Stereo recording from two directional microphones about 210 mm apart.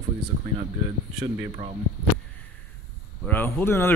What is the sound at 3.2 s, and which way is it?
Speech, 10° left (ahead or behind).